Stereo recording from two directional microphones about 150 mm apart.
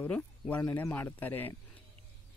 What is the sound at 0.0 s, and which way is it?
Speech, 10° left (ahead or behind).